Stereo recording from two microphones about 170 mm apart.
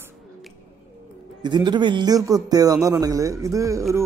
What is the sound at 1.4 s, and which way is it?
Speech, 25° right (ahead or behind).